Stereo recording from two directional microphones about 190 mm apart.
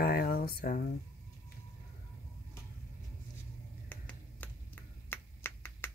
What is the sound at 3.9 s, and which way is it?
Finger snapping, 10° left (ahead or behind).